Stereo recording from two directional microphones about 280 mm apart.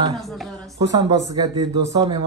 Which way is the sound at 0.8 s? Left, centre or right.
Centre.